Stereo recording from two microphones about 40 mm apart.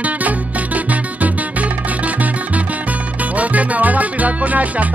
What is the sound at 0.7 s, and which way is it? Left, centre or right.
Music, right.